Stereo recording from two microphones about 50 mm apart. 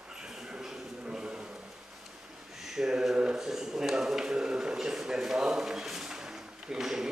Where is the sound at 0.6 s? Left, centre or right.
Centre.